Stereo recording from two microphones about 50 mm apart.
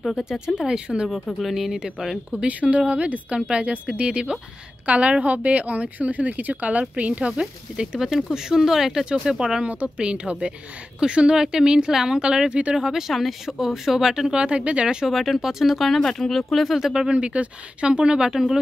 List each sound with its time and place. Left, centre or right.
0.6 s speech: centre
1.4 s speech: centre
2.3 s a woman's voice: right
9.7 s a woman's voice: right
12.7 s speech: centre
15.1 s speech: centre
16.0 s speech: centre
16.7 s speech: centre
17.1 s a woman's voice: right